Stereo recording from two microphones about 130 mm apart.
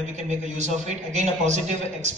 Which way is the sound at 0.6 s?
65° right (ahead or behind).